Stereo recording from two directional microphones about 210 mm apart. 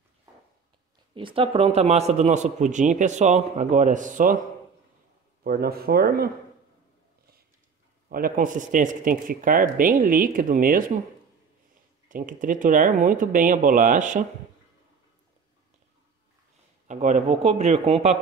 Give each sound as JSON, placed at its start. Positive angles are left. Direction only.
{"t": 1.1, "sound": "a man's voice", "side_deg": -25}
{"t": 5.4, "sound": "speech", "side_deg": -45}
{"t": 8.1, "sound": "a man's voice", "side_deg": -40}
{"t": 12.1, "sound": "a man's voice", "side_deg": -40}
{"t": 16.8, "sound": "a man's voice", "side_deg": -35}